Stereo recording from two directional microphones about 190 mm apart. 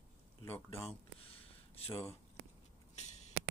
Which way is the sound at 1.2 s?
30° left (ahead or behind).